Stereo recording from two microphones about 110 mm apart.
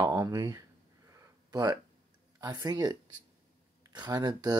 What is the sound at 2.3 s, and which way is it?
Speech, 40° right (ahead or behind).